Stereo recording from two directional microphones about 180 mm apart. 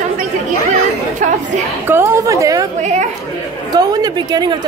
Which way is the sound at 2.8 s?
40° right (ahead or behind).